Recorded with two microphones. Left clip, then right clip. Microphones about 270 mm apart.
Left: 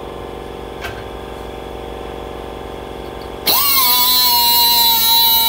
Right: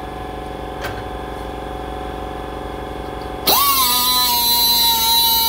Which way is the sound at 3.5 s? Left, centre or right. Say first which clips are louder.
Even; centre.